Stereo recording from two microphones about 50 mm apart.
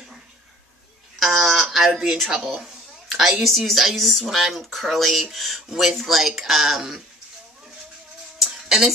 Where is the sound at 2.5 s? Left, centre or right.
Centre.